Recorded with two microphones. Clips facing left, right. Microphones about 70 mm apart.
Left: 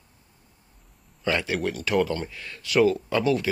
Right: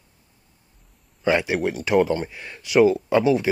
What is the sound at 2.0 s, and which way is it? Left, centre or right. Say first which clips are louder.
Speech: right 5 dB; centre.